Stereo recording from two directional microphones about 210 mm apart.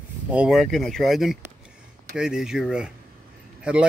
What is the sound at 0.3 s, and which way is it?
Speech, 5° right (ahead or behind).